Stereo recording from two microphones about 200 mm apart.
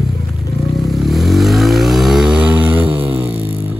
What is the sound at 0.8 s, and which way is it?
Vehicle, centre (ahead or behind).